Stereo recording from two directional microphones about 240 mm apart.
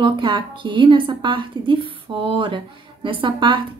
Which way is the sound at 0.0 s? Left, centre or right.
Centre.